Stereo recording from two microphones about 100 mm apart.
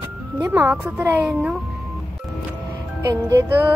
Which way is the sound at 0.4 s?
20° right (ahead or behind).